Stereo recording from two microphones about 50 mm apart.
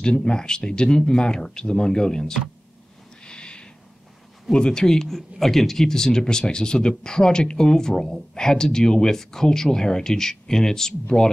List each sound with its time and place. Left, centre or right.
0.0 s speech: centre
3.3 s a sound: centre
4.5 s speech: centre